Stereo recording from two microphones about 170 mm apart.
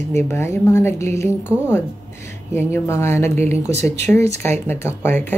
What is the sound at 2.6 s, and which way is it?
Speech, 15° left (ahead or behind).